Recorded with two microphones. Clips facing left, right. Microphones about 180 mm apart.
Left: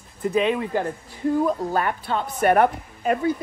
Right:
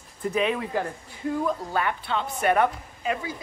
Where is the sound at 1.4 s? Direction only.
40° left (ahead or behind).